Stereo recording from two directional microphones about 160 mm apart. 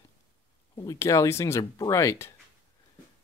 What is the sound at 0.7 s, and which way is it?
Speech, 20° left (ahead or behind).